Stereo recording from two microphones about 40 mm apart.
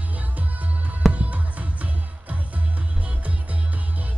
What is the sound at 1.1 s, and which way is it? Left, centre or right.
Music, right.